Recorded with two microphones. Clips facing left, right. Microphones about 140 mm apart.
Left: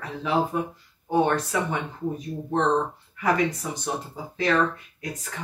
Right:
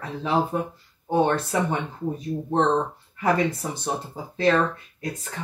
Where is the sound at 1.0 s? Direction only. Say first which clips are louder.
Right 1 dB; 30° right (ahead or behind).